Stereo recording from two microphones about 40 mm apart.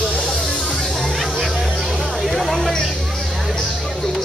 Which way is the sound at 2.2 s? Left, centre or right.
Centre.